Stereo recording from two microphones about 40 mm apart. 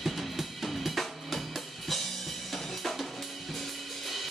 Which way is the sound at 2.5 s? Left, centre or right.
Centre.